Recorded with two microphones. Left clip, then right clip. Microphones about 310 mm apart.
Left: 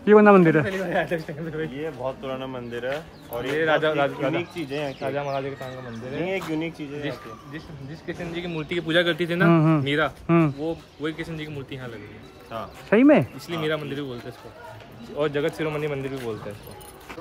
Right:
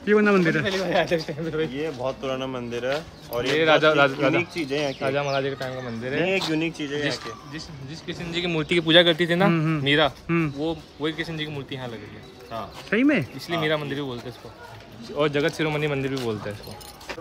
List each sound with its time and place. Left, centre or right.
0.0 s speech: centre
0.7 s speech: right
8.3 s speech: centre
8.6 s speech: right
9.5 s speech: centre
9.8 s speech: right
10.2 s speech: centre
10.6 s speech: right
12.9 s speech: centre
13.5 s speech: centre
15.1 s speech: right